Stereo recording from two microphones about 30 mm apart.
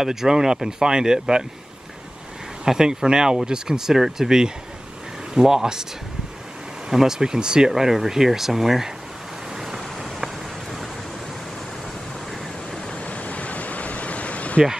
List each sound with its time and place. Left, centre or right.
0.0 s speech: centre
2.6 s speech: right
6.9 s speech: centre
7.2 s speech: right
7.7 s speech: centre
10.2 s a sound: centre
13.0 s ocean: left